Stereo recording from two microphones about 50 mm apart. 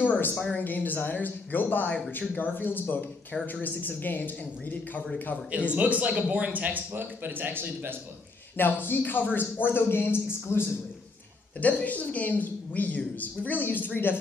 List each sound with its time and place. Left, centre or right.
0.0 s a sound: left
0.6 s speech: left
5.5 s a man's voice: right
8.5 s speech: left
11.6 s speech: left